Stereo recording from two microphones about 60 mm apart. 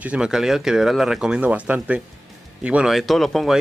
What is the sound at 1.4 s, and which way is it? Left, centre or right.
Speech, right.